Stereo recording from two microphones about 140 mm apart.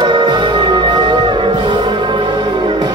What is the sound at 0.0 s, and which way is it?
Music, 35° right (ahead or behind).